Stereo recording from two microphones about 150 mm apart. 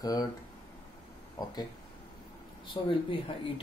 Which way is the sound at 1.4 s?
25° left (ahead or behind).